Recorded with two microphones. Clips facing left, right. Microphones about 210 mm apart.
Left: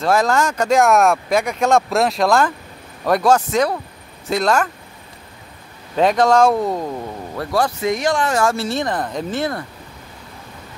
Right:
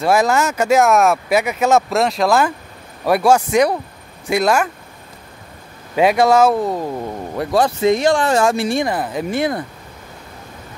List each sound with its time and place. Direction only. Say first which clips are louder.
0.0 s speech: right 1 dB; 10° right (ahead or behind)
5.9 s speech: right 1 dB; 10° right (ahead or behind)
7.3 s speech: right 3 dB; 20° right (ahead or behind)
8.5 s speech: right 3 dB; 15° right (ahead or behind)